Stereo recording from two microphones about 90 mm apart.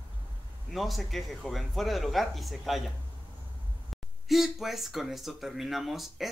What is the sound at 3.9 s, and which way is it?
Speech, centre (ahead or behind).